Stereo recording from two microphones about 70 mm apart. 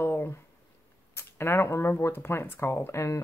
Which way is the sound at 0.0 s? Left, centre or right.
Left.